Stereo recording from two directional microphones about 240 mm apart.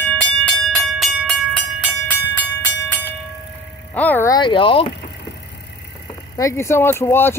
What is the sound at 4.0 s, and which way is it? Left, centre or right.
Vehicle, centre.